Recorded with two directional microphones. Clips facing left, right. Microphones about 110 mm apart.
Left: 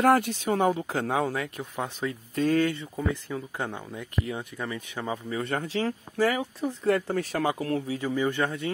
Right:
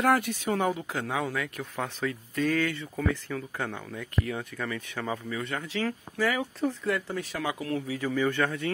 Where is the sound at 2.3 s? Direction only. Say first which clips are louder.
Left 4 dB; 30° left (ahead or behind).